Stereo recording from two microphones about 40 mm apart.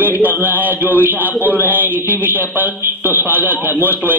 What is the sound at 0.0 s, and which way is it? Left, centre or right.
A man's voice, right.